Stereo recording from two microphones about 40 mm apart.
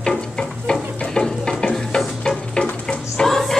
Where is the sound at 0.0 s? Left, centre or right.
Centre.